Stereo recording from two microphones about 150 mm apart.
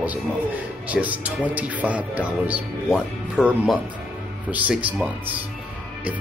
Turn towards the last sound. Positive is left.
turn(degrees=-10)  # may be behind; listen again after turning